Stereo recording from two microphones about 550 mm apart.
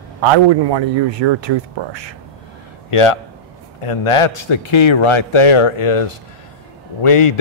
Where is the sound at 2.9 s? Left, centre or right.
Left.